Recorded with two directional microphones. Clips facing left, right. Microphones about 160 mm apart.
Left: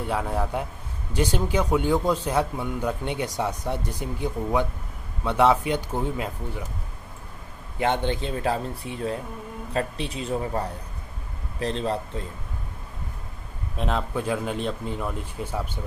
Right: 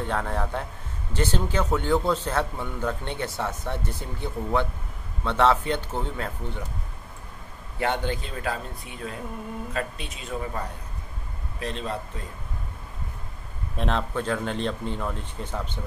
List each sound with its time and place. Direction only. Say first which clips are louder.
0.0 s a man's voice: left 1 dB; 10° left (ahead or behind)
7.8 s speech: left 3 dB; 20° left (ahead or behind)
11.6 s speech: left 5 dB; 35° left (ahead or behind)
13.7 s a man's voice: even; 5° left (ahead or behind)